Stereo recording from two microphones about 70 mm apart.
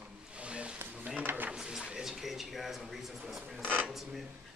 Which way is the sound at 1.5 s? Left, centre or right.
Centre.